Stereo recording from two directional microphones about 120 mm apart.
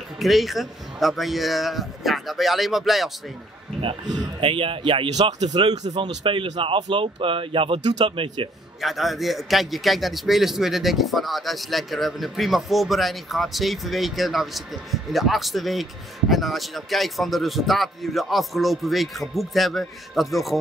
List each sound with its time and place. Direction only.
0.2 s a man's voice: centre (ahead or behind)
4.4 s speech: 50° right (ahead or behind)
5.1 s speech: 70° right (ahead or behind)
5.5 s speech: 35° right (ahead or behind)
8.8 s a man's voice: centre (ahead or behind)